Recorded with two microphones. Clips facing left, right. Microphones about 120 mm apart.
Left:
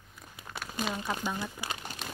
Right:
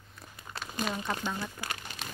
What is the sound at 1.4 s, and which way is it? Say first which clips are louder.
Speech: left 1 dB; 10° left (ahead or behind).